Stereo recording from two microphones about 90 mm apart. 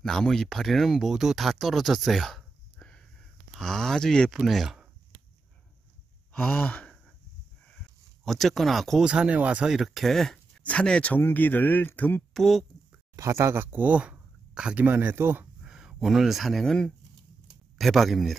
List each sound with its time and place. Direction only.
0.0 s speech: 5° left (ahead or behind)
6.3 s speech: 15° left (ahead or behind)
8.2 s speech: 5° left (ahead or behind)
9.0 s speech: 10° right (ahead or behind)
10.6 s speech: 15° left (ahead or behind)
12.4 s speech: centre (ahead or behind)
13.1 s speech: 35° right (ahead or behind)
15.6 s speech: 10° right (ahead or behind)